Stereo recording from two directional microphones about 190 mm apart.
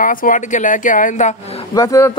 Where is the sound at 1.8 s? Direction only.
15° left (ahead or behind).